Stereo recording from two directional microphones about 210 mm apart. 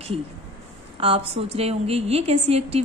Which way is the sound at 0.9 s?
25° right (ahead or behind).